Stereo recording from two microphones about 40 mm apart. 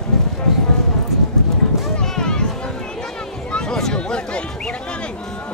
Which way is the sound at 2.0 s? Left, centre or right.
Centre.